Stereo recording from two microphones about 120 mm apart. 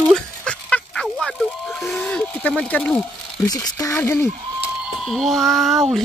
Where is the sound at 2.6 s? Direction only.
10° left (ahead or behind).